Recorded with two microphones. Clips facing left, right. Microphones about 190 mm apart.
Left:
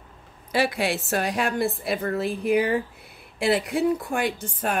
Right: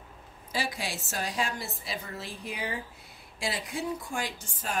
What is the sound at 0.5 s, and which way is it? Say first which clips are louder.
Speech: left 10 dB; 65° left (ahead or behind).